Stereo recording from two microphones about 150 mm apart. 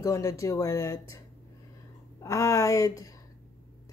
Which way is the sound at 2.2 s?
20° left (ahead or behind).